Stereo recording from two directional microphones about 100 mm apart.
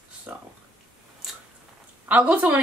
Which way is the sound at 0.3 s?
15° right (ahead or behind).